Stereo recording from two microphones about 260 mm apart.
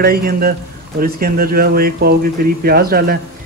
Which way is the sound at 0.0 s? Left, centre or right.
Right.